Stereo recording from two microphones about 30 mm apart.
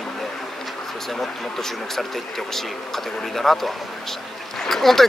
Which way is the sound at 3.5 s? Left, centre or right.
Centre.